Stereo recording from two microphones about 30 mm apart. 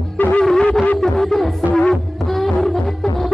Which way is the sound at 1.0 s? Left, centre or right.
Centre.